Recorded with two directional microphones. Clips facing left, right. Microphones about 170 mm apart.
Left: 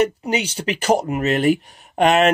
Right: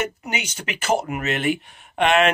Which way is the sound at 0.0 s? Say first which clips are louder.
Left 8 dB; 35° left (ahead or behind).